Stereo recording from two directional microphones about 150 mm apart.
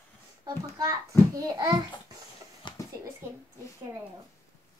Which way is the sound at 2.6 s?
30° left (ahead or behind).